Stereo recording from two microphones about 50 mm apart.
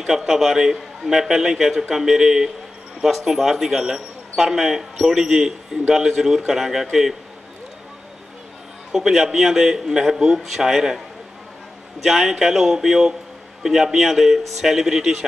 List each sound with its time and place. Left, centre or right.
0.0 s a man's voice: centre
8.9 s a man's voice: centre
12.0 s a man's voice: centre